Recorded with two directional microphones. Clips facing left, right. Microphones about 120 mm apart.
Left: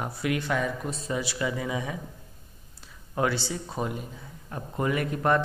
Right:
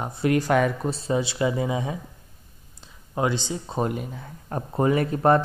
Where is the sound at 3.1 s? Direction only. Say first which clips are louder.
Right 2 dB; 20° right (ahead or behind).